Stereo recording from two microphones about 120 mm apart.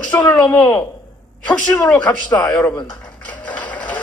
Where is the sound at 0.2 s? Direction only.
10° left (ahead or behind).